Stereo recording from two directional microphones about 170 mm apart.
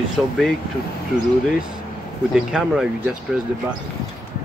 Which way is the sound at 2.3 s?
5° right (ahead or behind).